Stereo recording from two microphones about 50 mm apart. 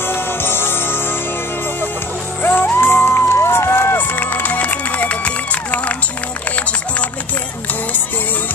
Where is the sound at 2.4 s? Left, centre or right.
Left.